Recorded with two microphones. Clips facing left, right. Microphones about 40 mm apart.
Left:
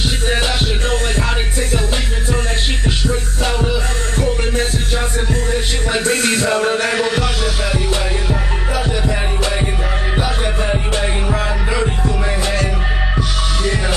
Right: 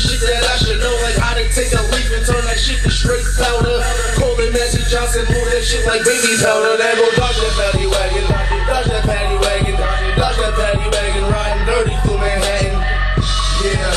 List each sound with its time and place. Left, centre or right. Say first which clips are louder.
3.7 s music: right 3 dB; right